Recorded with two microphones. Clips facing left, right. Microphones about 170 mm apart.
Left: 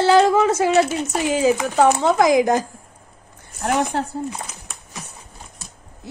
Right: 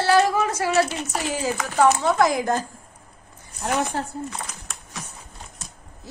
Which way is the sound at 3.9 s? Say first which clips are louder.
Left 4 dB; 65° left (ahead or behind).